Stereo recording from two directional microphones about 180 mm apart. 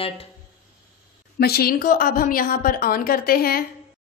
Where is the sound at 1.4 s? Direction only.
60° left (ahead or behind).